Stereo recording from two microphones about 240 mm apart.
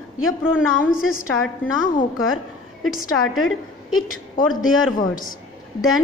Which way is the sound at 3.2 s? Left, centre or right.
Left.